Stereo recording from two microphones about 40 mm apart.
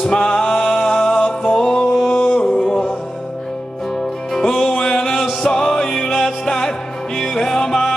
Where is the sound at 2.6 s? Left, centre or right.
Centre.